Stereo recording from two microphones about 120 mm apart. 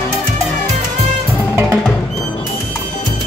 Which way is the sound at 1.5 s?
10° right (ahead or behind).